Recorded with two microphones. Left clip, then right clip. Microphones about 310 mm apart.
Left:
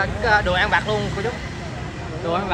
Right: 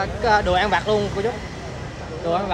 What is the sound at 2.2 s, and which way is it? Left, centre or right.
Speech, right.